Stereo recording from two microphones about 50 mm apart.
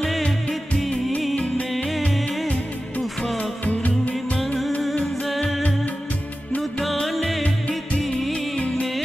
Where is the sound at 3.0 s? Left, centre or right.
Centre.